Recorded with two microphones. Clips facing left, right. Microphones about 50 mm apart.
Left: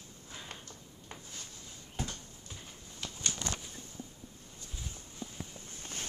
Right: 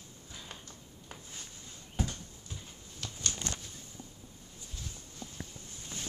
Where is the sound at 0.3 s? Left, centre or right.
Left.